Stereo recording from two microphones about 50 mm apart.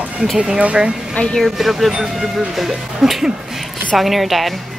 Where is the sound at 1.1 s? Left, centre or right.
Centre.